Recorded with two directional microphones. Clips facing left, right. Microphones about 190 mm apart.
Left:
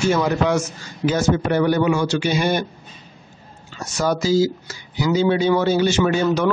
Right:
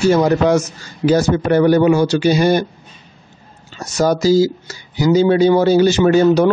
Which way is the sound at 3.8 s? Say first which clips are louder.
Right 6 dB; 40° right (ahead or behind).